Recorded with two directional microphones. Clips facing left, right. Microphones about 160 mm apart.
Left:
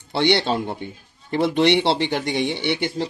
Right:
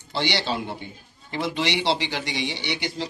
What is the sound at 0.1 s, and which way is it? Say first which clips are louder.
Speech: left 7 dB; 60° left (ahead or behind).